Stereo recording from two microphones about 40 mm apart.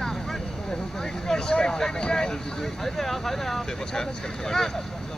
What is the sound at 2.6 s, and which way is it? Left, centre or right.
Speech, centre.